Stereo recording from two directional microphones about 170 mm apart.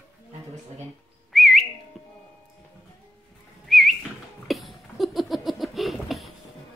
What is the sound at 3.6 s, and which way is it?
Whistling, centre (ahead or behind).